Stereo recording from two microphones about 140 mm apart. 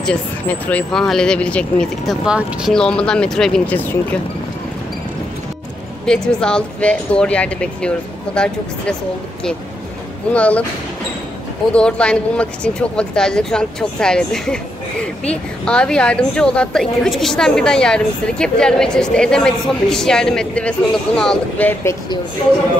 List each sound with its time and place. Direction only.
0.0 s speech: 10° left (ahead or behind)
2.2 s speech: 5° right (ahead or behind)
2.7 s speech: 5° left (ahead or behind)
6.0 s speech: 5° left (ahead or behind)
10.3 s speech: 10° left (ahead or behind)
11.7 s speech: 5° left (ahead or behind)